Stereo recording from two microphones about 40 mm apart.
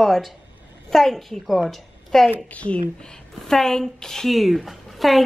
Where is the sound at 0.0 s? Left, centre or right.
Centre.